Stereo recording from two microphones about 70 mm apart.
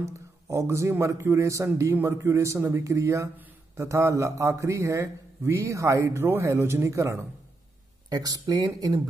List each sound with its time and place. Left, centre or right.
0.0 s a man's voice: right
8.1 s speech: right